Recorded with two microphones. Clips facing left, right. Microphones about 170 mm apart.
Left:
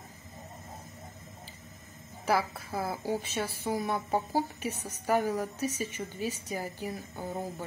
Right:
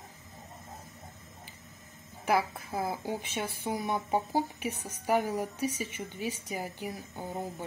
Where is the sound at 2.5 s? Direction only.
15° right (ahead or behind).